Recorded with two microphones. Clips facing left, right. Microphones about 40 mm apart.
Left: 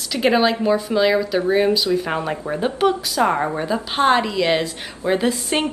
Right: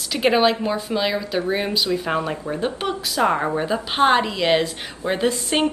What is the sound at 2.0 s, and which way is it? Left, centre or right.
Speech, centre.